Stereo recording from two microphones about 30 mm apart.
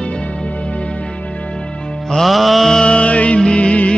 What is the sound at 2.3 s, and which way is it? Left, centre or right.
Mantra, centre.